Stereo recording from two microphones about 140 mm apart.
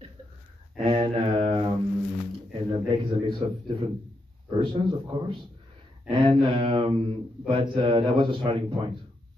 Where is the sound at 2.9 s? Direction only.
35° right (ahead or behind).